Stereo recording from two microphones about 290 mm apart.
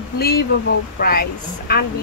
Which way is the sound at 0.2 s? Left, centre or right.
Left.